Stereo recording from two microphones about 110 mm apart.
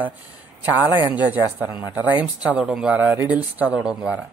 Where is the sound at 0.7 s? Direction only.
15° right (ahead or behind).